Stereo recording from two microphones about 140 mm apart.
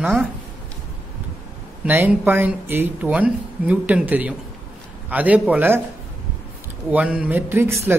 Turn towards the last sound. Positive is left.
turn(degrees=-15)  # may be behind; listen again after turning